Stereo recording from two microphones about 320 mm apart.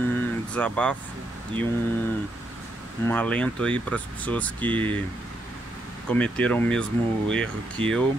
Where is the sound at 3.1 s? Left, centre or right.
Centre.